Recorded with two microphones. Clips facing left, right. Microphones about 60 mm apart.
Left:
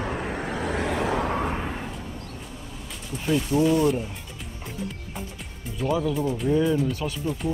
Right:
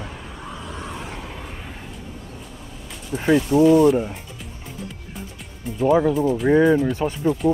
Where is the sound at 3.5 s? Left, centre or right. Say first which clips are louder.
Right 7 dB; centre.